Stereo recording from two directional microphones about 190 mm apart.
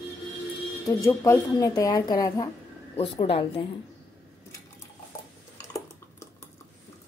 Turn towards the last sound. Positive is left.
turn(degrees=15)  # may be behind; listen again after turning